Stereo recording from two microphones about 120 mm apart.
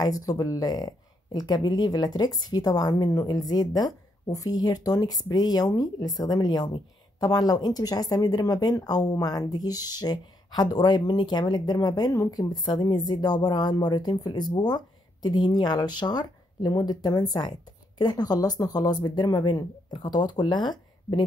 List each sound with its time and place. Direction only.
0.0 s speech: 30° left (ahead or behind)